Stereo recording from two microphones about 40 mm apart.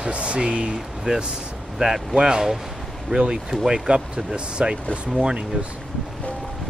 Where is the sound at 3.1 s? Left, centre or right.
Right.